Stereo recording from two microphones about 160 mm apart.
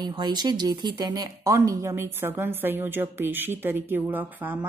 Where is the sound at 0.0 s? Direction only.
25° right (ahead or behind).